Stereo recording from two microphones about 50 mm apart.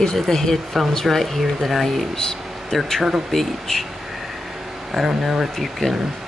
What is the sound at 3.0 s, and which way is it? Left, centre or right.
Speech, centre.